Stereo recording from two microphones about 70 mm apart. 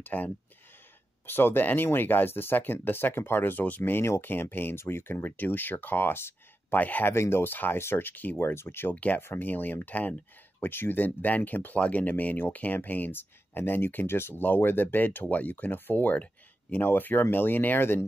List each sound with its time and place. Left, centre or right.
0.0 s speech: left
7.2 s speech: left
8.9 s speech: left
9.2 s speech: left